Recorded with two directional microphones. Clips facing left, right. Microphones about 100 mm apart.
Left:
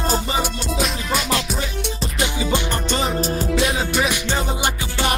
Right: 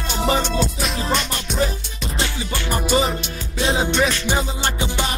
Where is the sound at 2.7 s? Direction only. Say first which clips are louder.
Right 3 dB; 10° right (ahead or behind).